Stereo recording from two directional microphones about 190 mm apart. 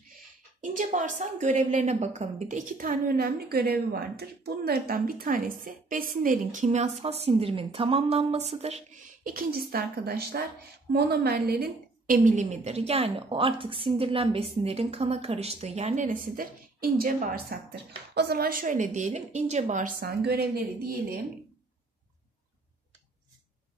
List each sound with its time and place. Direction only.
0.6 s a woman's voice: 40° right (ahead or behind)
12.3 s a woman's voice: 40° right (ahead or behind)
20.1 s a woman's voice: 55° right (ahead or behind)